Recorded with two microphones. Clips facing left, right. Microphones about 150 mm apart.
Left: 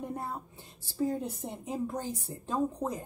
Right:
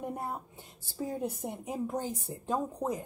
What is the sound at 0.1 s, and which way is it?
A woman's voice, 15° right (ahead or behind).